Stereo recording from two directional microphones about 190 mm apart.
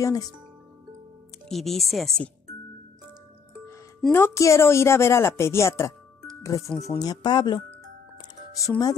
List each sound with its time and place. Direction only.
0.0 s speech: 20° left (ahead or behind)
1.5 s speech: centre (ahead or behind)
4.0 s a woman's voice: 10° left (ahead or behind)
8.2 s music: 20° left (ahead or behind)